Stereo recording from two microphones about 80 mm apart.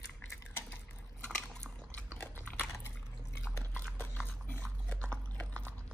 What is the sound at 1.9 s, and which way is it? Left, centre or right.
Biting, left.